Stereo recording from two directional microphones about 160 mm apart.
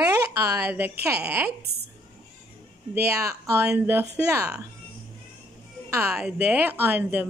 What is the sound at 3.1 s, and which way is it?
Speech, 20° right (ahead or behind).